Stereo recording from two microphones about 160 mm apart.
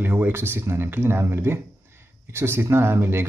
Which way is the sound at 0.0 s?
10° right (ahead or behind).